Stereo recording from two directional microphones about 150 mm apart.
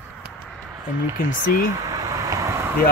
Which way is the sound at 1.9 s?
20° right (ahead or behind).